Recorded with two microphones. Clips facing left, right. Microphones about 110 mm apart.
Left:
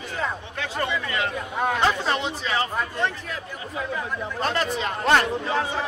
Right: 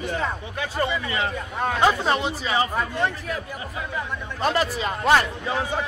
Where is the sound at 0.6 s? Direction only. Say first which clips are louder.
Right 2 dB; 15° right (ahead or behind).